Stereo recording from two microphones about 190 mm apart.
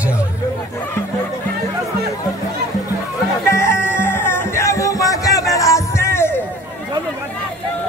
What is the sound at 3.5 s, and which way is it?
Music, 15° left (ahead or behind).